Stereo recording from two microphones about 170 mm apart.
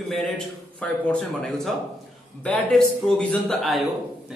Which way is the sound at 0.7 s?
5° left (ahead or behind).